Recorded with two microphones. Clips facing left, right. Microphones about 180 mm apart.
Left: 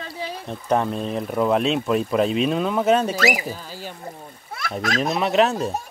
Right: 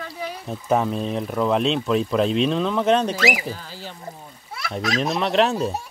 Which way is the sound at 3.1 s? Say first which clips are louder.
Left 1 dB; 45° left (ahead or behind).